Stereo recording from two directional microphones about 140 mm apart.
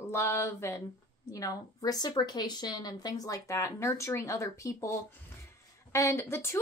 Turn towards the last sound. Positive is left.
turn(degrees=15)  # may be behind; listen again after turning